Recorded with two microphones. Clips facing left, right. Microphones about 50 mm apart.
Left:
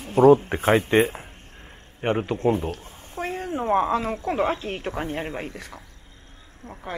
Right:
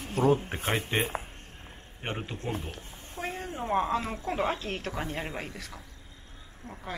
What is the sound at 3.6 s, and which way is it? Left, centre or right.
Speech, left.